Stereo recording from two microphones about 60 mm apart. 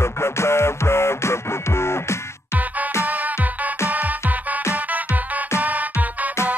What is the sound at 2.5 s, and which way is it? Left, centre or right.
Music, right.